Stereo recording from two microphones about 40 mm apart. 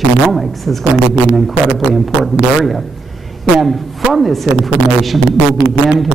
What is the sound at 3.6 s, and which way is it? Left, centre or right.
Speech, centre.